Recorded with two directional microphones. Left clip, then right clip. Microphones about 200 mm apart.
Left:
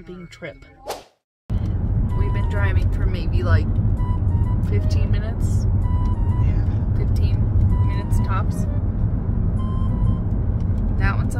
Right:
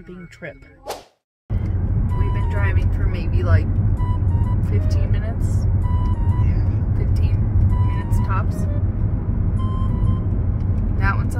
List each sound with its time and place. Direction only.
2.1 s vehicle: centre (ahead or behind)
3.3 s music: 5° right (ahead or behind)
7.2 s vehicle: centre (ahead or behind)
8.0 s vehicle: 15° right (ahead or behind)
9.6 s music: centre (ahead or behind)
11.0 s speech: 20° right (ahead or behind)